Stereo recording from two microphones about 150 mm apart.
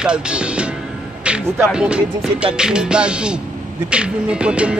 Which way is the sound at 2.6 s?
5° right (ahead or behind).